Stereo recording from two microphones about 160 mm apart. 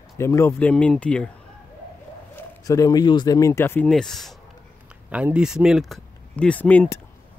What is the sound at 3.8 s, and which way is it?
Speech, 5° left (ahead or behind).